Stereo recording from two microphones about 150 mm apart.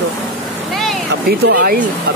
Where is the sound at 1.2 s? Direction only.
90° right.